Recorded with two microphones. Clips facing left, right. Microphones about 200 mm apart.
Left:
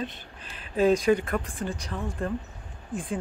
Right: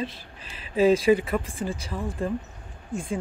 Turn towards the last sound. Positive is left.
turn(degrees=0)  # may be behind; listen again after turning